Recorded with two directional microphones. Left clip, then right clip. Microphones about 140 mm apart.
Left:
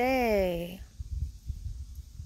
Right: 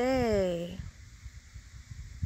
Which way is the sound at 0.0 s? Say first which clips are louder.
Left 2 dB; 5° left (ahead or behind).